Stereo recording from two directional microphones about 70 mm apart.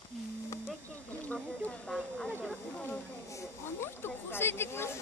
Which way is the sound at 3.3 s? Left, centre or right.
Left.